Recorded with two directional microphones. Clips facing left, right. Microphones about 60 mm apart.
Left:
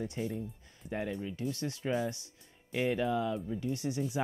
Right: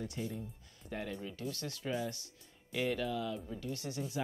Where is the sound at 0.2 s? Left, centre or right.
Left.